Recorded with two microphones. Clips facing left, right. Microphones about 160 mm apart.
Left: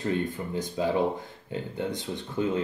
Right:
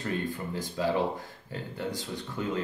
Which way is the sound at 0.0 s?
20° left (ahead or behind).